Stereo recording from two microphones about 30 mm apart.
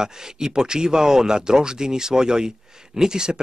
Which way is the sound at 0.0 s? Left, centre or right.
Right.